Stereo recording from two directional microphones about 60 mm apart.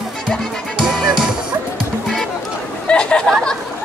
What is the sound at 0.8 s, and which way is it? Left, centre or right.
Music, centre.